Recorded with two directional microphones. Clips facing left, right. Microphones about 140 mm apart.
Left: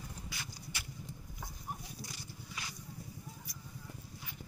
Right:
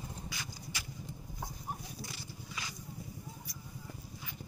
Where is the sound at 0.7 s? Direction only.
90° right.